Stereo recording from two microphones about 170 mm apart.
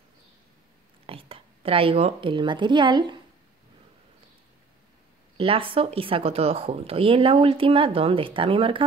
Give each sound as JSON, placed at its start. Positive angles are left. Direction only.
{"t": 1.0, "sound": "a woman's voice", "side_deg": -35}
{"t": 5.4, "sound": "speech", "side_deg": -35}